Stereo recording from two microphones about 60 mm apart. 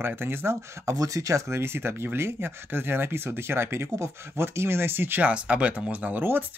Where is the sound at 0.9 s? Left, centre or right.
Right.